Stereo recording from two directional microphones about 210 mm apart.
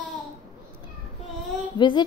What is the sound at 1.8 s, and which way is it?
Speech, 20° left (ahead or behind).